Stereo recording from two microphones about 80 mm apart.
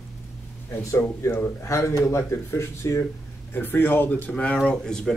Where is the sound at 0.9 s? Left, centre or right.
Left.